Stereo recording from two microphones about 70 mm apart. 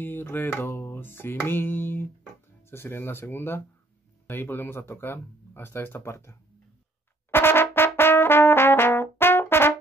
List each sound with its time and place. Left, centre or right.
0.0 s music: left
2.7 s speech: left
7.2 s brass instrument: left